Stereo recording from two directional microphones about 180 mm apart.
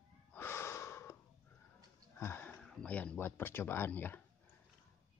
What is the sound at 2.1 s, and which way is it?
Speech, 10° left (ahead or behind).